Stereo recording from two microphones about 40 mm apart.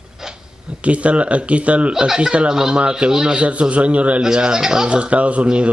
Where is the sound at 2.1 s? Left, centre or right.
Centre.